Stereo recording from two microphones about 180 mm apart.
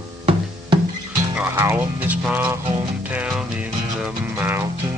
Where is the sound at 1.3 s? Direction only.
10° right (ahead or behind).